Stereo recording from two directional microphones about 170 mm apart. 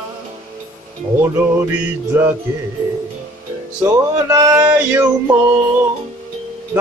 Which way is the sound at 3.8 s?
20° right (ahead or behind).